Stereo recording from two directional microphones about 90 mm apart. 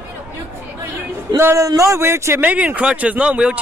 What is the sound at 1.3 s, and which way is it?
A man's voice, 35° right (ahead or behind).